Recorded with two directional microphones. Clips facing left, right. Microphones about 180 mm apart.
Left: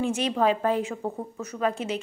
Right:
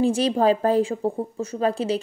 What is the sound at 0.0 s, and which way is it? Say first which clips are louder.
A woman's voice: right 5 dB; 35° right (ahead or behind).